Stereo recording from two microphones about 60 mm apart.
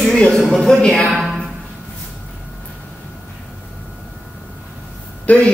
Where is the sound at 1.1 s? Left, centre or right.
Centre.